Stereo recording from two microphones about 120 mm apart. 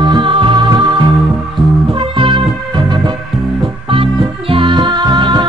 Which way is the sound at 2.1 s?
45° right (ahead or behind).